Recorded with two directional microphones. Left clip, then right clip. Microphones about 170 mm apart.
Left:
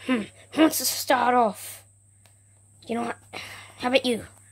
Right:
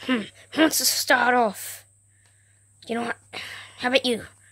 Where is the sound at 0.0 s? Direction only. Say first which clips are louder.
Right 1 dB; 5° right (ahead or behind).